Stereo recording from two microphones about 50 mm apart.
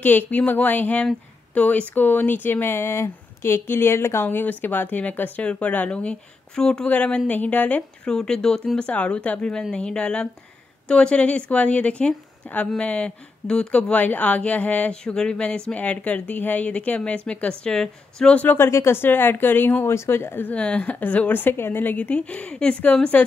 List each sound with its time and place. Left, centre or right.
0.0 s speech: left
8.0 s speech: centre
8.7 s speech: left
9.5 s speech: centre
18.3 s speech: left
18.6 s speech: left
19.9 s speech: left
20.5 s speech: left
21.8 s speech: left